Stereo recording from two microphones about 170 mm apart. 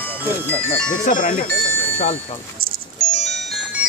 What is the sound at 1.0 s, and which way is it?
Speech, 50° left (ahead or behind).